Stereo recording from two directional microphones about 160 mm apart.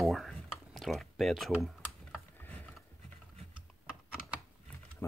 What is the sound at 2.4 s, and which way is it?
Mechanisms, 10° left (ahead or behind).